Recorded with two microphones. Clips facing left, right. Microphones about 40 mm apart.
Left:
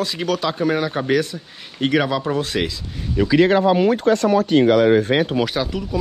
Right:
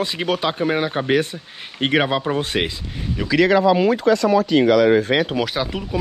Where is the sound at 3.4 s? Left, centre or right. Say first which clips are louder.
Right 1 dB; right.